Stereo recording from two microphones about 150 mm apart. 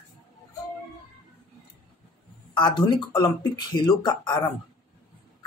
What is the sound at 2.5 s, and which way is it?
Speech, 30° left (ahead or behind).